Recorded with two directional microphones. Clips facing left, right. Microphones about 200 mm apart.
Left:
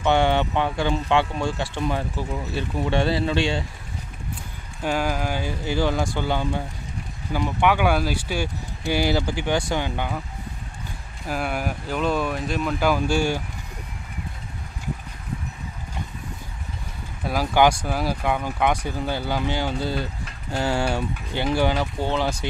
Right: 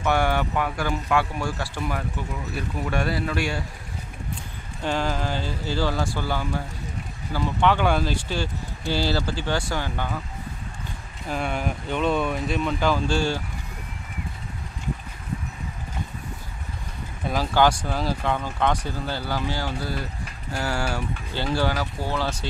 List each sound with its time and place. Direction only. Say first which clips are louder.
0.0 s speech: left 3 dB; 25° left (ahead or behind)
4.8 s speech: left 1 dB; 10° left (ahead or behind)
11.2 s speech: left 1 dB; 5° left (ahead or behind)
17.2 s speech: left 2 dB; 10° left (ahead or behind)